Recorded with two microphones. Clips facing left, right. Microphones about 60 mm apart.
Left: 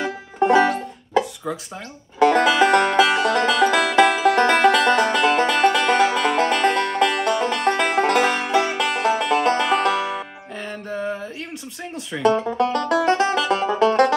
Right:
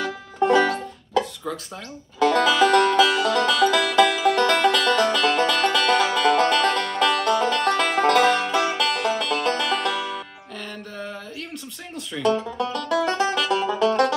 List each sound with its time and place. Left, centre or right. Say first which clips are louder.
0.0 s music: left 2 dB; centre
12.2 s music: left 4 dB; left